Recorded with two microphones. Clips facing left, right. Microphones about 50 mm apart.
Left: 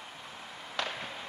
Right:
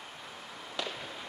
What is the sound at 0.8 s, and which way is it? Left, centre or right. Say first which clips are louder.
Fireworks: left 2 dB; left.